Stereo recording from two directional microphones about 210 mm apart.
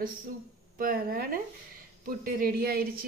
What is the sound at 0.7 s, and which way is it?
A woman's voice, 45° right (ahead or behind).